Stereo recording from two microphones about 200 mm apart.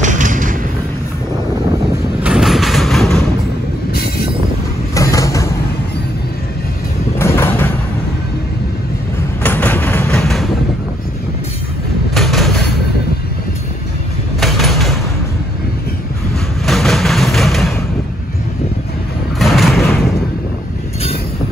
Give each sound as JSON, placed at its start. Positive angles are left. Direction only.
{"t": 0.0, "sound": "thump", "side_deg": -40}
{"t": 2.2, "sound": "vehicle", "side_deg": -5}
{"t": 4.9, "sound": "a sound", "side_deg": 15}
{"t": 7.2, "sound": "sliding door", "side_deg": 10}
{"t": 9.4, "sound": "vehicle", "side_deg": 10}
{"t": 12.1, "sound": "vehicle", "side_deg": 0}
{"t": 14.4, "sound": "a sound", "side_deg": 0}
{"t": 16.6, "sound": "music", "side_deg": 0}
{"t": 19.3, "sound": "vehicle", "side_deg": 0}